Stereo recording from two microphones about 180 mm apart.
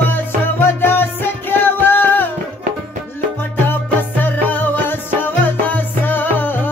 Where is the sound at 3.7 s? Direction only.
10° left (ahead or behind).